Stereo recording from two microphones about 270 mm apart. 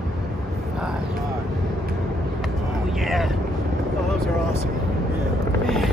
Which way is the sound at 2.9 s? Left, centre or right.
Centre.